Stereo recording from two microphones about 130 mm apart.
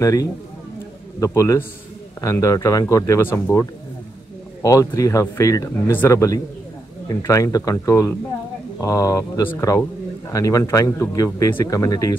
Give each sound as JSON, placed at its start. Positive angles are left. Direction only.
{"t": 0.0, "sound": "speech", "side_deg": 25}